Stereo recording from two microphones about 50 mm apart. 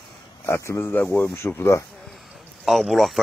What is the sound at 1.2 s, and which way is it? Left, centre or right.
Speech, left.